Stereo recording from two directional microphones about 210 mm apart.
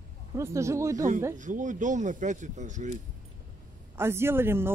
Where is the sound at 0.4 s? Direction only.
15° right (ahead or behind).